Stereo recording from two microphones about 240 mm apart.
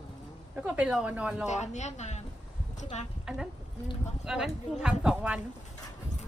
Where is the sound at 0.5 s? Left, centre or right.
Centre.